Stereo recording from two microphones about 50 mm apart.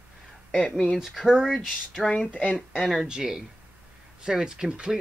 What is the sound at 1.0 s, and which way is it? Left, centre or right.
Speech, centre.